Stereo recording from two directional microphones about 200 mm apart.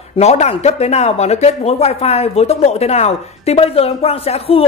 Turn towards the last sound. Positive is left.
turn(degrees=30)  # may be behind; listen again after turning